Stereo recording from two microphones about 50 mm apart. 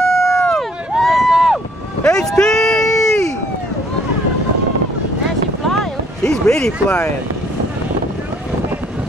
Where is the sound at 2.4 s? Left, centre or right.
Centre.